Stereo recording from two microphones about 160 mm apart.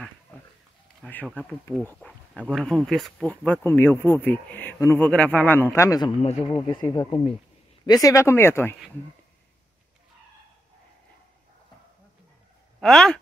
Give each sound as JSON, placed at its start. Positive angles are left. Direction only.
{"t": 1.0, "sound": "a man's voice", "side_deg": 10}
{"t": 3.6, "sound": "a man's voice", "side_deg": 15}
{"t": 12.8, "sound": "speech", "side_deg": 5}